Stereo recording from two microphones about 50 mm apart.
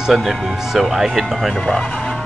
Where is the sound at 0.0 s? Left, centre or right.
Centre.